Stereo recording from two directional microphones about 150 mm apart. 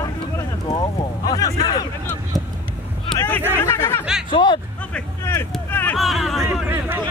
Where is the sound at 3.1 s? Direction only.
15° left (ahead or behind).